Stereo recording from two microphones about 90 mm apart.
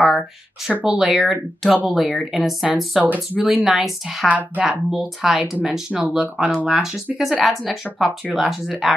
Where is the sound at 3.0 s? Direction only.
20° right (ahead or behind).